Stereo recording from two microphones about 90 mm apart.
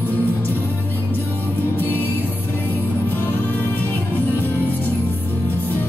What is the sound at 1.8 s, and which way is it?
Music, 20° left (ahead or behind).